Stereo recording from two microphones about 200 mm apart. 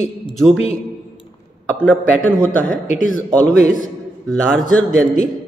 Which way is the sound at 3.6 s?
40° left (ahead or behind).